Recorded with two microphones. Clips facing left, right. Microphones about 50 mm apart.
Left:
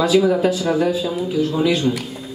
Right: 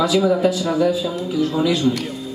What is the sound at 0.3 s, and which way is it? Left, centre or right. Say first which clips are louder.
A man's voice: even; left.